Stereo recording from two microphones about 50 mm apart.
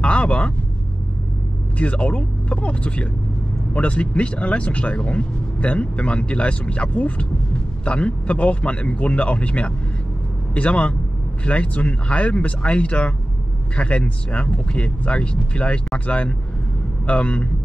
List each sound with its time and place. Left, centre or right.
0.0 s vehicle: left
1.8 s speech: left